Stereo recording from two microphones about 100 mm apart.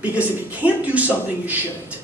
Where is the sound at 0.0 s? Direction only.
15° right (ahead or behind).